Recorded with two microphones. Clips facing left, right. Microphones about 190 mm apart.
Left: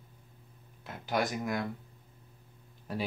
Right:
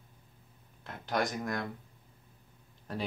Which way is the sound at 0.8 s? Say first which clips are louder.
Left 1 dB; 5° left (ahead or behind).